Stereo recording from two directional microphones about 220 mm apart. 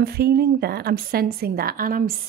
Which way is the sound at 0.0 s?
45° right (ahead or behind).